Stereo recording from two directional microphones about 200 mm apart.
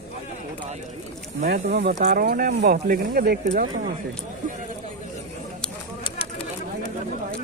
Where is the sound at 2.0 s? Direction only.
50° right (ahead or behind).